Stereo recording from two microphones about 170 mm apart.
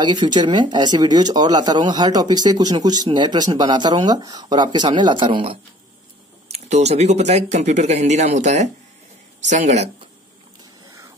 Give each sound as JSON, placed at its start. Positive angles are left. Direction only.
{"t": 0.0, "sound": "speech", "side_deg": -25}